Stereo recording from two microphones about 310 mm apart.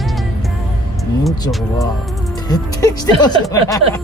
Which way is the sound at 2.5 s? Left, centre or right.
Centre.